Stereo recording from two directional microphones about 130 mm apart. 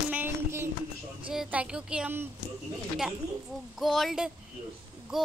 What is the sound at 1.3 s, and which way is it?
Speech, 5° right (ahead or behind).